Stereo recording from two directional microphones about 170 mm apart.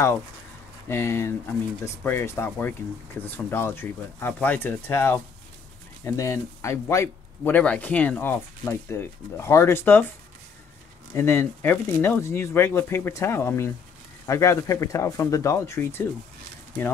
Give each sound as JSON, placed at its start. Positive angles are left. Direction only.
{"t": 0.8, "sound": "speech", "side_deg": 15}
{"t": 11.1, "sound": "speech", "side_deg": 15}